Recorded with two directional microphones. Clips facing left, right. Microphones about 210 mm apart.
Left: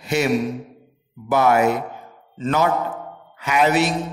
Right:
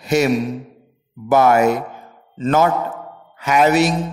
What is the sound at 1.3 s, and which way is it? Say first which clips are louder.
Speech: right 3 dB; 45° right (ahead or behind).